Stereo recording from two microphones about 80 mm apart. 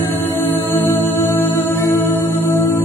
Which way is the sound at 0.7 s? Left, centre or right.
Left.